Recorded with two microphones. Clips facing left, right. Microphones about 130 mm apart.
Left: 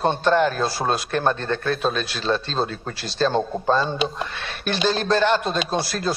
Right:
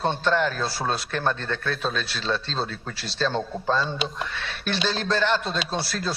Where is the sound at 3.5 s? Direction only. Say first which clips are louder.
Left 4 dB; 50° left (ahead or behind).